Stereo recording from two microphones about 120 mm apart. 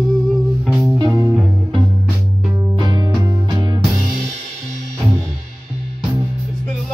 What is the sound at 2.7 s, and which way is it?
Music, 35° right (ahead or behind).